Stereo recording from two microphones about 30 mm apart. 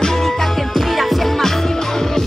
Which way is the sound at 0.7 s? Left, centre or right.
Centre.